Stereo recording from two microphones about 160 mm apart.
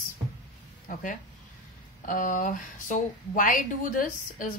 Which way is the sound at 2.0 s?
55° left (ahead or behind).